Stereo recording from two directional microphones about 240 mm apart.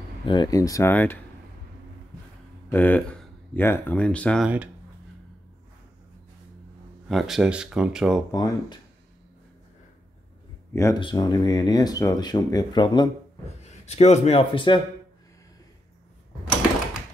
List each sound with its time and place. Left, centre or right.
0.2 s speech: centre
2.7 s speech: centre
7.1 s speech: centre
8.3 s speech: centre
10.7 s speech: centre